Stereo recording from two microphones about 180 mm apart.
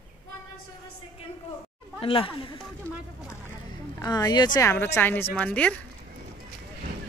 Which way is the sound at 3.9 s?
20° left (ahead or behind).